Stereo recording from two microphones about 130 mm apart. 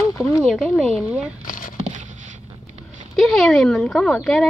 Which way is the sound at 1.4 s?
90° left.